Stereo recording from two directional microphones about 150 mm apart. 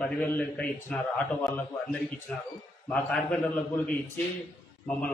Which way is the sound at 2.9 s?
5° left (ahead or behind).